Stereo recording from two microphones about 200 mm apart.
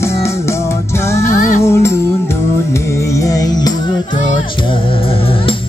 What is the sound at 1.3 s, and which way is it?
Music, 40° left (ahead or behind).